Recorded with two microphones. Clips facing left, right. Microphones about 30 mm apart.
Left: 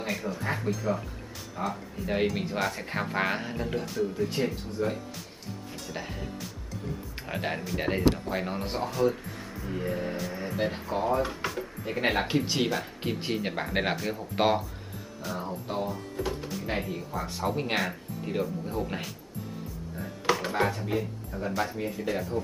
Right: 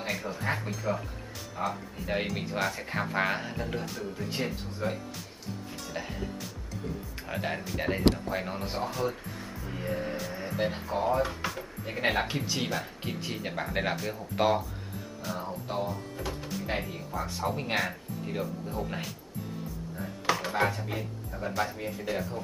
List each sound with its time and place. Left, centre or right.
0.0 s speech: centre
7.2 s speech: centre
13.2 s speech: centre
13.9 s speech: centre
14.3 s speech: centre
15.2 s speech: centre